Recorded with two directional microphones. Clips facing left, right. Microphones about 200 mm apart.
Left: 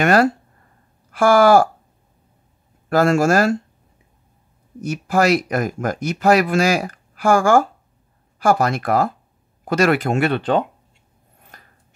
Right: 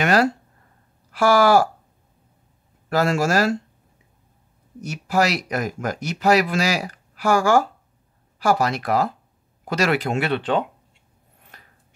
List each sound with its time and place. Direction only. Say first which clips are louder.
0.0 s speech: left 3 dB; 50° left (ahead or behind)
2.9 s speech: left 5 dB; 50° left (ahead or behind)
4.8 s speech: left 4 dB; 50° left (ahead or behind)
11.5 s a sound: left 2 dB; 45° left (ahead or behind)